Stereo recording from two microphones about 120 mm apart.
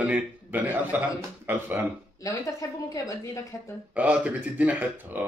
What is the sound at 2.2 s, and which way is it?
A woman's voice, 30° left (ahead or behind).